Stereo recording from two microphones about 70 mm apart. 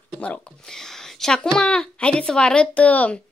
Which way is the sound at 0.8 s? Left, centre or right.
Centre.